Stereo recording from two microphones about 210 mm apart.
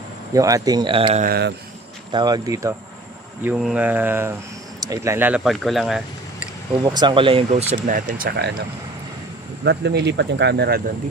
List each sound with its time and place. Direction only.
0.3 s speech: 15° right (ahead or behind)
1.2 s speech: 50° right (ahead or behind)
2.1 s speech: 20° right (ahead or behind)
3.4 s speech: 5° right (ahead or behind)
6.8 s speech: 20° right (ahead or behind); by 8.5 s 50° right (ahead or behind)
9.7 s speech: 55° right (ahead or behind)